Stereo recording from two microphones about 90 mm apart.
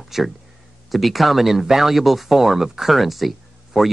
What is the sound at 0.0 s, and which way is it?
Speech, centre (ahead or behind).